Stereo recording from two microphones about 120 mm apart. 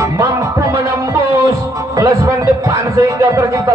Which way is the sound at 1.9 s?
25° right (ahead or behind).